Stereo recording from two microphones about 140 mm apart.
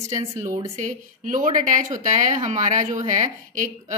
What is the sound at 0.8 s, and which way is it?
Speech, 65° right (ahead or behind).